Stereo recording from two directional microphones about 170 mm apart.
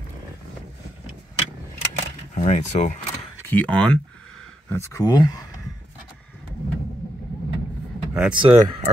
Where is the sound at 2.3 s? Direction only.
45° left (ahead or behind).